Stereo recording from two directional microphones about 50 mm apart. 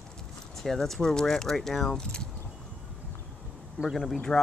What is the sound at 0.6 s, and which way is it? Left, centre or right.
Speech, centre.